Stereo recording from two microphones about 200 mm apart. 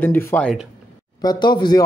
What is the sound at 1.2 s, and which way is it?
Speech, 20° left (ahead or behind).